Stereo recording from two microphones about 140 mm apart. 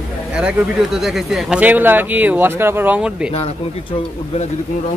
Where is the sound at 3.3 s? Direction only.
45° left (ahead or behind).